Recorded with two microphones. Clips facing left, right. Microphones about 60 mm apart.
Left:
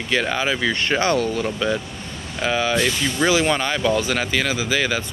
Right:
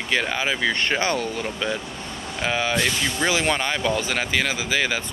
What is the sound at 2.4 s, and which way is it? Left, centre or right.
Speech, right.